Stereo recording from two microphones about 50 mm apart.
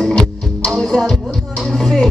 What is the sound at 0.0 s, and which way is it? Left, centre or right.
Music, centre.